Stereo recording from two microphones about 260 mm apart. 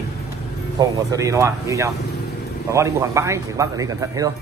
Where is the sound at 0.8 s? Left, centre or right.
Centre.